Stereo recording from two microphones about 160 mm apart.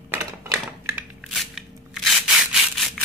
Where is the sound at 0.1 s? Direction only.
15° right (ahead or behind).